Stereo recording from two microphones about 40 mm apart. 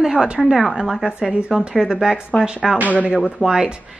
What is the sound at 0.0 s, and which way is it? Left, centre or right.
A woman's voice, centre.